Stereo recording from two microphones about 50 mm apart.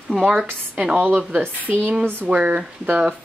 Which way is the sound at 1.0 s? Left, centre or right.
Right.